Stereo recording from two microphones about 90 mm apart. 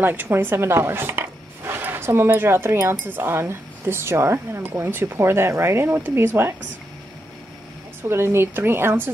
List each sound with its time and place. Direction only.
0.0 s speech: 20° right (ahead or behind)
8.1 s speech: 30° right (ahead or behind)